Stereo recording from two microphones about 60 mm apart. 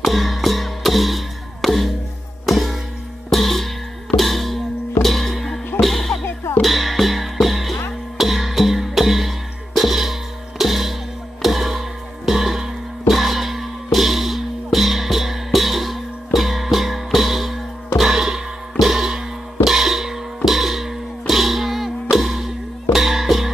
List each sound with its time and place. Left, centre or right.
0.0 s music: centre
6.2 s music: left
6.6 s music: centre